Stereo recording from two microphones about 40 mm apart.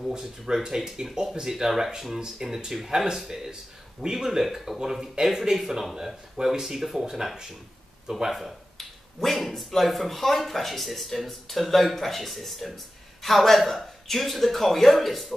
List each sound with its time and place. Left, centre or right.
0.1 s speech: centre